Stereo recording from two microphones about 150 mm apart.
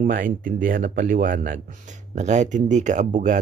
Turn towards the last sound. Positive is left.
turn(degrees=-60)  # may be behind; listen again after turning